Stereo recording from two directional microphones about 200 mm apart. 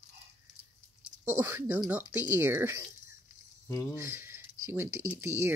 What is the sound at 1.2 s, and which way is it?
Speech, 10° right (ahead or behind).